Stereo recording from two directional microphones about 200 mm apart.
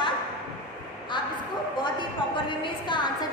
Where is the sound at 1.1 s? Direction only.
25° left (ahead or behind).